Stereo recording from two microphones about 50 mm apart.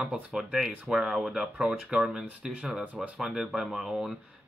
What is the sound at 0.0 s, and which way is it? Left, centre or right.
Speech, centre.